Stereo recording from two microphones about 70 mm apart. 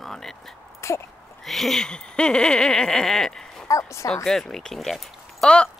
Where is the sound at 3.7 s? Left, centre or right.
Left.